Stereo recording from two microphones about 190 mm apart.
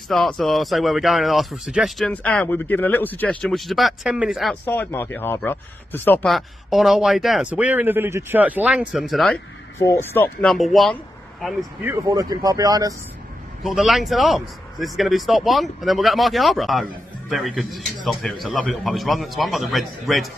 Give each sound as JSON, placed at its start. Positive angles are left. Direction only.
{"t": 0.1, "sound": "speech", "side_deg": 0}
{"t": 4.6, "sound": "speech", "side_deg": 10}
{"t": 11.8, "sound": "speech", "side_deg": -15}
{"t": 13.7, "sound": "speech", "side_deg": 0}